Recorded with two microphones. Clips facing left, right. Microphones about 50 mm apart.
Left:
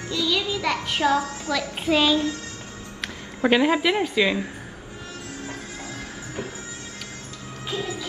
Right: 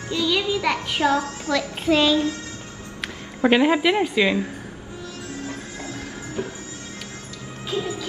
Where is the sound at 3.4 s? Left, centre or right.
Centre.